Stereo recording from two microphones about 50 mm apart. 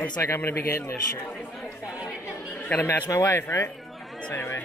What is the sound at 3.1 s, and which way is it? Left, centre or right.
Speech, left.